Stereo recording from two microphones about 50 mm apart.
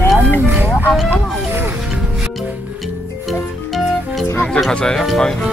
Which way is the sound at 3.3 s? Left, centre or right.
Centre.